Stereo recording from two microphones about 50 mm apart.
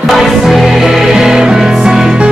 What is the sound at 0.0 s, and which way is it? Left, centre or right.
Music, centre.